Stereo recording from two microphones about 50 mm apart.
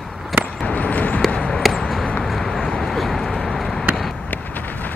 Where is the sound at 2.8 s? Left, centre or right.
Centre.